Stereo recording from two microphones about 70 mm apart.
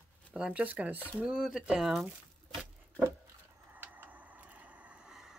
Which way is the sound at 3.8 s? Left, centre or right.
Right.